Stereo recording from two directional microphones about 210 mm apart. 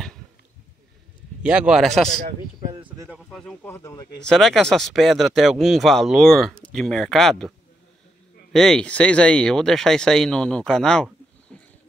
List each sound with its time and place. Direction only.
1.4 s speech: 5° right (ahead or behind)
2.7 s speech: 20° right (ahead or behind)
3.1 s speech: centre (ahead or behind)
4.2 s speech: centre (ahead or behind)
8.5 s speech: 5° left (ahead or behind)